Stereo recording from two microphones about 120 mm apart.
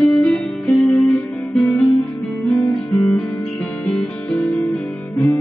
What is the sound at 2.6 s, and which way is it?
Guitar, 30° left (ahead or behind).